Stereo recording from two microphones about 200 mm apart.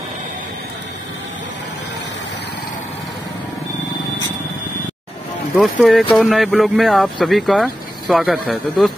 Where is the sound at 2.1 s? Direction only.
60° left (ahead or behind).